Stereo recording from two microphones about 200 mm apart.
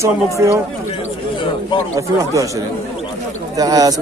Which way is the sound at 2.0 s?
15° right (ahead or behind).